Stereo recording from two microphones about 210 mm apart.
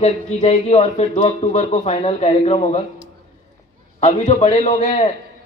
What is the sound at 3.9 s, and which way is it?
Speech, 35° left (ahead or behind).